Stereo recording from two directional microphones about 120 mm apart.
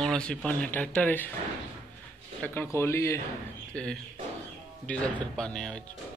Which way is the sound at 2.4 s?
15° left (ahead or behind).